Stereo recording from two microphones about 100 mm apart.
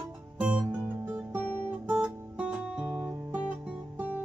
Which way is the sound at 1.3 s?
15° right (ahead or behind).